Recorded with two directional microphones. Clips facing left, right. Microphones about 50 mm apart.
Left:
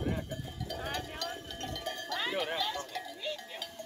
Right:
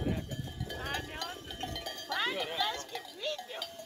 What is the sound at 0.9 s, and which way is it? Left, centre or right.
Cowbell, centre.